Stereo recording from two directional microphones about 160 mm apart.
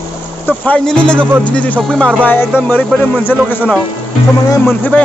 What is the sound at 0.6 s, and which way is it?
Speech, 5° left (ahead or behind).